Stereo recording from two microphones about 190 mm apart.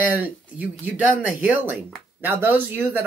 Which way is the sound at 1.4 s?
10° right (ahead or behind).